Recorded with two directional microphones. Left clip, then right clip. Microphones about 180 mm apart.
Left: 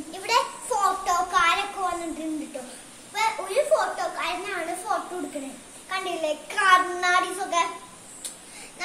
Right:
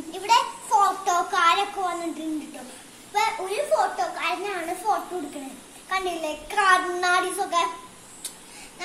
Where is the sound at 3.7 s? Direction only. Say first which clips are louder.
Right 1 dB; 20° left (ahead or behind).